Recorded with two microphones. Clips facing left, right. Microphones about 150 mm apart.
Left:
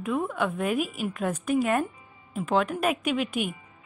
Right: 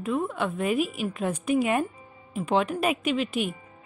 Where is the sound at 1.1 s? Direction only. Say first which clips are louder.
Right 1 dB; 10° right (ahead or behind).